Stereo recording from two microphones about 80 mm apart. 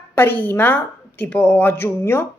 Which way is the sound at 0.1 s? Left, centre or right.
Left.